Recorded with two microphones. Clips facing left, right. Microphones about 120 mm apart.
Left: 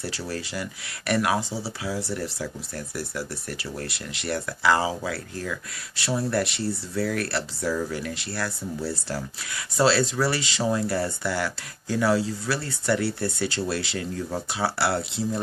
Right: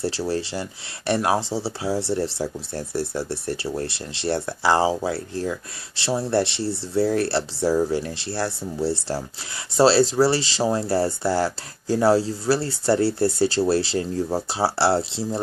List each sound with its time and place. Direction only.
0.0 s speech: 30° right (ahead or behind)